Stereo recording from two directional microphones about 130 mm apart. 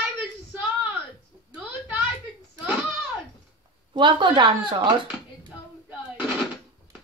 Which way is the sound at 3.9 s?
35° right (ahead or behind).